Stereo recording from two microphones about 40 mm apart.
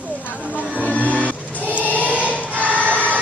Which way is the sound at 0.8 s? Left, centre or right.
Left.